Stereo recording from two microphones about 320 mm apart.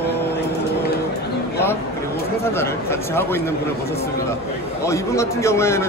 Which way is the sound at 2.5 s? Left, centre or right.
Centre.